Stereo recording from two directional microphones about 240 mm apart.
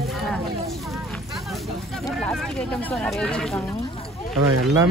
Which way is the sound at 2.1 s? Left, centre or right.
Centre.